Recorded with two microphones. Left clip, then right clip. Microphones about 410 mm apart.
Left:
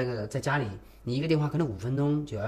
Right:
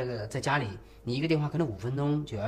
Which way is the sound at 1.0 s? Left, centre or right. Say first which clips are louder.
Left 1 dB; centre.